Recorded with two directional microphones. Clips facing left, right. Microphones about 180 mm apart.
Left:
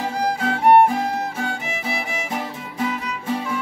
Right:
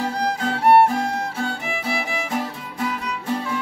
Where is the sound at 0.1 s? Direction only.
5° left (ahead or behind).